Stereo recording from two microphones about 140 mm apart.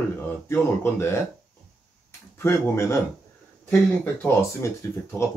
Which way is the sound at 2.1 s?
20° left (ahead or behind).